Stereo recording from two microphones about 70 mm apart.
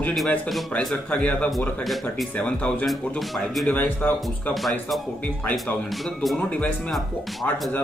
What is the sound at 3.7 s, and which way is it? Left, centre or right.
Speech, left.